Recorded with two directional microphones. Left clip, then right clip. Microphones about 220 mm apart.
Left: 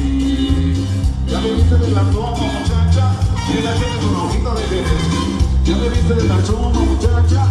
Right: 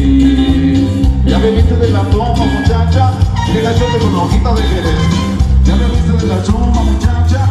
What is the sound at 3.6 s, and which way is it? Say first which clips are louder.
Music: right 9 dB; 45° right (ahead or behind).